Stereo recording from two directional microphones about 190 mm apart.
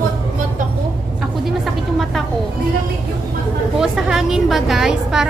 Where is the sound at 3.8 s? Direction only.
Centre (ahead or behind).